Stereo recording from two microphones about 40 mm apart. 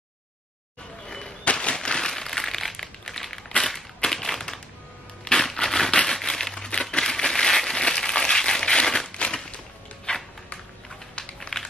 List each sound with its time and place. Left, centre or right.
1.0 s crumpling: left; by 3.3 s centre
3.6 s crushing: centre
5.9 s crumpling: centre
9.1 s crushing: left
10.1 s a sound: left